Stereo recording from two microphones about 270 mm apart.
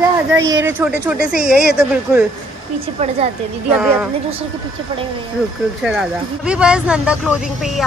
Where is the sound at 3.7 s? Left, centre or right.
Centre.